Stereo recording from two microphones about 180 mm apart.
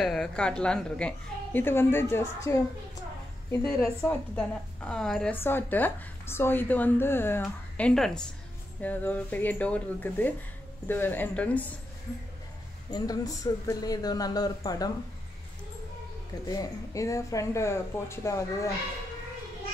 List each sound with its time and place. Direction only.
0.0 s a woman's voice: centre (ahead or behind)
3.8 s speech: 15° left (ahead or behind)
4.4 s speech: 5° left (ahead or behind)
12.9 s speech: 20° left (ahead or behind)
16.4 s speech: 20° left (ahead or behind)